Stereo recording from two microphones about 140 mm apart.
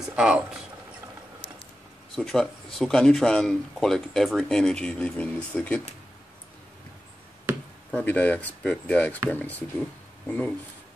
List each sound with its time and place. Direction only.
0.0 s speech: 5° right (ahead or behind)
2.1 s speech: 5° left (ahead or behind)
7.5 s chop: 20° right (ahead or behind)
7.9 s speech: 10° left (ahead or behind)